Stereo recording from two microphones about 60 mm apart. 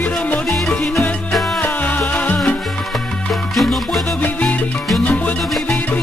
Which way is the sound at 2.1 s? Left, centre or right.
Left.